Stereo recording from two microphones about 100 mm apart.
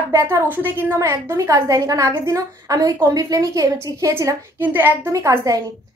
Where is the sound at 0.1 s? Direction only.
25° right (ahead or behind).